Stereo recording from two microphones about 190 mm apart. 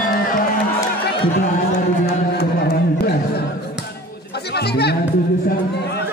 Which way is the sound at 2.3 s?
60° left (ahead or behind).